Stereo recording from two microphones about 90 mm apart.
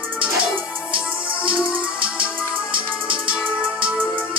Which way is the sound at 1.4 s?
10° right (ahead or behind).